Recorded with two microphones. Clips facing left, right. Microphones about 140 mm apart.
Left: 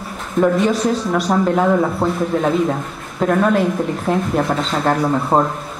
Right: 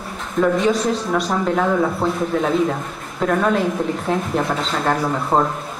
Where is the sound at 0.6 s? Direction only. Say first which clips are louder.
Left 1 dB; centre (ahead or behind).